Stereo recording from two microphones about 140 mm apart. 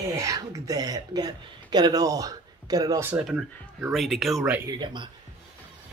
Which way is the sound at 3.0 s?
10° right (ahead or behind).